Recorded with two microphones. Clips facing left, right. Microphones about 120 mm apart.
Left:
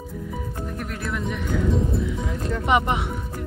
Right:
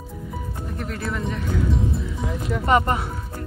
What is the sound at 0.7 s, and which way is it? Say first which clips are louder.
Speech: right 3 dB; centre (ahead or behind).